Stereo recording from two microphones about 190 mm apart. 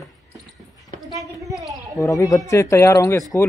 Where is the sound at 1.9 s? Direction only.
15° left (ahead or behind).